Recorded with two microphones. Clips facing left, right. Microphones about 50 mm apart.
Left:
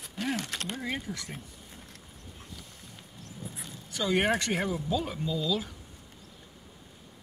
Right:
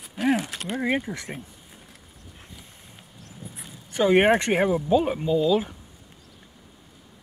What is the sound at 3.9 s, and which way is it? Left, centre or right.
Speech, right.